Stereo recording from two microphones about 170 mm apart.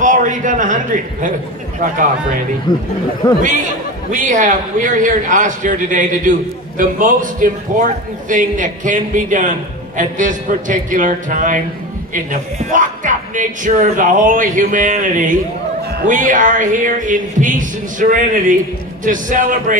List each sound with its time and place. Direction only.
0.0 s speech: 50° right (ahead or behind)
2.7 s speech: 25° left (ahead or behind)
4.1 s speech: 50° right (ahead or behind)